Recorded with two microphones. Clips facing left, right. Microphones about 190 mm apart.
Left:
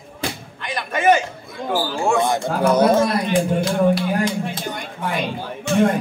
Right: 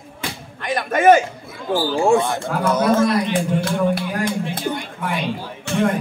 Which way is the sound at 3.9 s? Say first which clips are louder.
Left 2 dB; 55° right (ahead or behind).